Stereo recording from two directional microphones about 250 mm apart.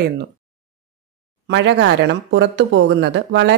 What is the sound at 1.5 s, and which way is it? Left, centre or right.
Speech, right.